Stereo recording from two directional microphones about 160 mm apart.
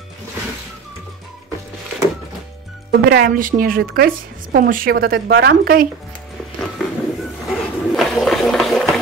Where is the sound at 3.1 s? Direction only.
70° right (ahead or behind).